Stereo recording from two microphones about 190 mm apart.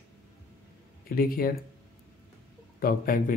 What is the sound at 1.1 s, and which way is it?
Speech, 50° left (ahead or behind).